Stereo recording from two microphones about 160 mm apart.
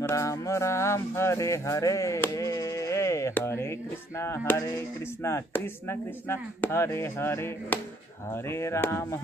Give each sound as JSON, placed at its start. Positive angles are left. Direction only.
{"t": 0.0, "sound": "speech", "side_deg": 20}